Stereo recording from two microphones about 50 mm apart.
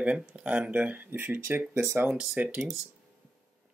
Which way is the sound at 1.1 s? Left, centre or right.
Right.